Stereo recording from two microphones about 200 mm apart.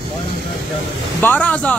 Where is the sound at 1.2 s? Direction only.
10° left (ahead or behind).